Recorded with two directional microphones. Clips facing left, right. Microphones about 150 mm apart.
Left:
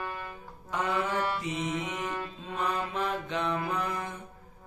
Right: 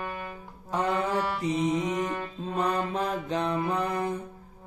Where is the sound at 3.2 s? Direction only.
35° right (ahead or behind).